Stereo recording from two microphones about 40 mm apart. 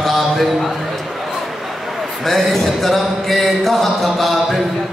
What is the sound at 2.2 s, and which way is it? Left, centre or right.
Music, centre.